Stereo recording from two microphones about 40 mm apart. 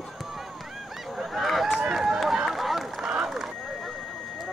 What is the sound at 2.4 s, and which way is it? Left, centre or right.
Run, centre.